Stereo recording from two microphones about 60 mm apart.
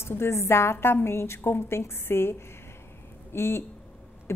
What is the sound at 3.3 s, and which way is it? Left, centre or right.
Speech, left.